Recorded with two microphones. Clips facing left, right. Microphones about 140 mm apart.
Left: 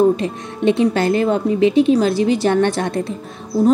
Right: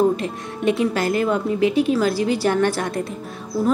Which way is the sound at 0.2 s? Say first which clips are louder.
Left 4 dB; 25° left (ahead or behind).